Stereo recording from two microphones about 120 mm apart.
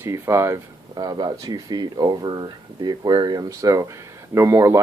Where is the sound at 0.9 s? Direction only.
35° right (ahead or behind).